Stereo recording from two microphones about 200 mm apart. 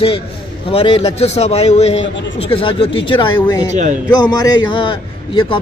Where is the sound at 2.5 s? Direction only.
25° left (ahead or behind).